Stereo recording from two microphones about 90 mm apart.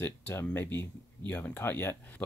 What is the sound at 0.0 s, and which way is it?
Speech, 25° left (ahead or behind).